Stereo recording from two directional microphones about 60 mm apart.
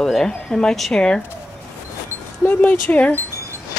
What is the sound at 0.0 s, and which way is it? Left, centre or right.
Speech, centre.